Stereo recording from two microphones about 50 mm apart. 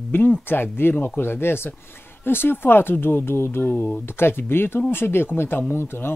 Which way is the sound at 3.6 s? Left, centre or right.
Left.